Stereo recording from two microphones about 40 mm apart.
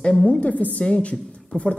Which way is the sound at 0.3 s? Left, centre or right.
Left.